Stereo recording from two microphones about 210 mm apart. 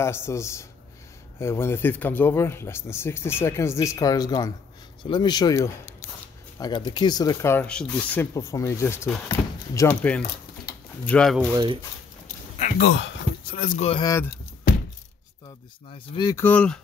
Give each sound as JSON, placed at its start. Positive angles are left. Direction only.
{"t": 0.0, "sound": "speech", "side_deg": 10}
{"t": 11.5, "sound": "speech", "side_deg": -20}
{"t": 12.5, "sound": "a sound", "side_deg": 40}
{"t": 12.8, "sound": "speech", "side_deg": 60}
{"t": 13.5, "sound": "speech", "side_deg": 40}
{"t": 14.0, "sound": "speech", "side_deg": 15}
{"t": 16.2, "sound": "speech", "side_deg": 15}